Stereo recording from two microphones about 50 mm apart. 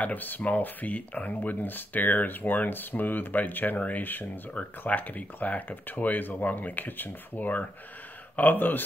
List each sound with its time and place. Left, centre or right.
0.0 s speech: left